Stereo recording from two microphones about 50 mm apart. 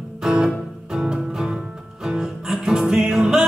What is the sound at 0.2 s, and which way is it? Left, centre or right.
Music, centre.